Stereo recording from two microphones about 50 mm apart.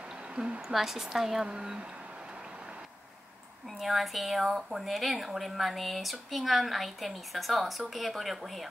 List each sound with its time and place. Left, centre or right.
0.3 s a woman's voice: right
0.7 s a woman's voice: centre
3.8 s speech: centre